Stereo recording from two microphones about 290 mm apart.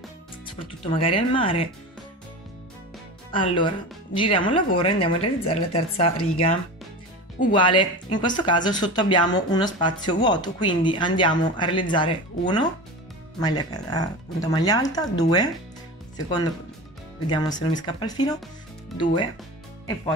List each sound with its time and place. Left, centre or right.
0.9 s a woman's voice: centre
3.3 s a woman's voice: centre
7.5 s speech: centre